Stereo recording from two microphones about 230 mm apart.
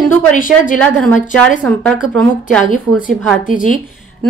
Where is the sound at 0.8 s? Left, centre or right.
Centre.